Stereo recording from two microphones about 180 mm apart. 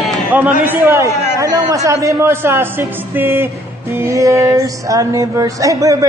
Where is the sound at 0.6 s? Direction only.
10° right (ahead or behind).